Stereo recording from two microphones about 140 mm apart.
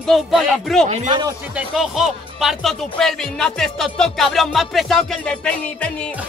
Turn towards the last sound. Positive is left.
turn(degrees=10)  # may be behind; listen again after turning